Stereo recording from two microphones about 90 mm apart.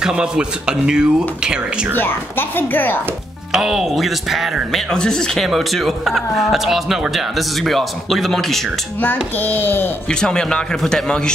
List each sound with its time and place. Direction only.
0.0 s speech: 10° right (ahead or behind)
2.0 s a woman's voice: 25° left (ahead or behind)
3.5 s speech: 5° right (ahead or behind)
9.0 s a woman's voice: 20° left (ahead or behind)
10.0 s a man's voice: 10° left (ahead or behind)